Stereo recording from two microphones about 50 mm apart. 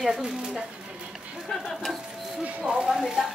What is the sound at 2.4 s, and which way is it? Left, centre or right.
Speech, right.